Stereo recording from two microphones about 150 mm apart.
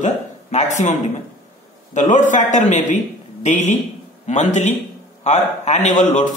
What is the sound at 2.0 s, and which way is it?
A man's voice, 55° left (ahead or behind).